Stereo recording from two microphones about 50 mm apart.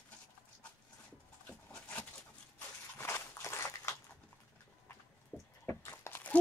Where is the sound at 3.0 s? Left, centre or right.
Left.